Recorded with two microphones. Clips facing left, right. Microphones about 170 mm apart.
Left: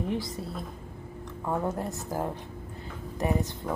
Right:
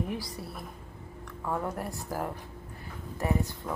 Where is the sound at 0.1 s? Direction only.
20° left (ahead or behind).